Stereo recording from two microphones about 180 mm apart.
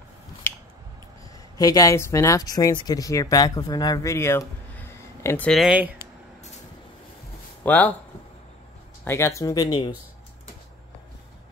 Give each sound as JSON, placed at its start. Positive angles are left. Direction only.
{"t": 1.6, "sound": "speech", "side_deg": 20}
{"t": 7.6, "sound": "speech", "side_deg": 10}
{"t": 9.0, "sound": "speech", "side_deg": 15}